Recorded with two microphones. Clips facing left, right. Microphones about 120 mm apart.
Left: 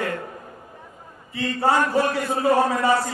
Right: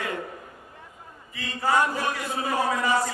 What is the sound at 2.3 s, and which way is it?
Speech, 40° left (ahead or behind).